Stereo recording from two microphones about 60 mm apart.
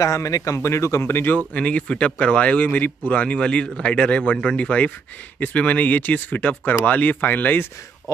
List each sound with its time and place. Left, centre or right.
0.0 s speech: left
1.1 s speech: left
1.5 s speech: left